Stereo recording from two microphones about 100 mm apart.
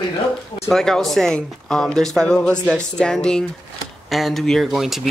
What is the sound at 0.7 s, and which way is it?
A woman's voice, 5° left (ahead or behind).